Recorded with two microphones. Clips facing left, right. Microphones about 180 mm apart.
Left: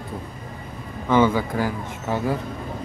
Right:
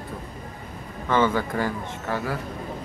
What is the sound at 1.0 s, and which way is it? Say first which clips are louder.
Speech: left 3 dB; 10° left (ahead or behind).